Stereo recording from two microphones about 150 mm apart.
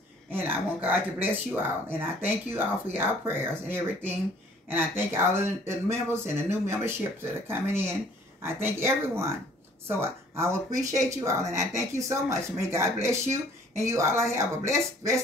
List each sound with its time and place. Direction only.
0.3 s speech: 15° right (ahead or behind)